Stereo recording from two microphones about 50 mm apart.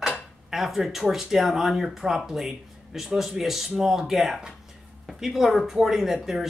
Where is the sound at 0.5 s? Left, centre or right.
Centre.